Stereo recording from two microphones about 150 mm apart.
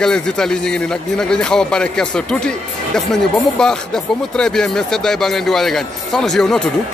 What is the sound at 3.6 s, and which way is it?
Speech, 5° left (ahead or behind).